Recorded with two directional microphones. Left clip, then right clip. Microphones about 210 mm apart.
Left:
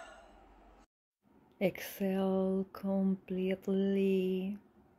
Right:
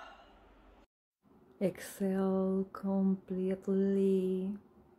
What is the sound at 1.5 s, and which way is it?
Speech, 5° left (ahead or behind).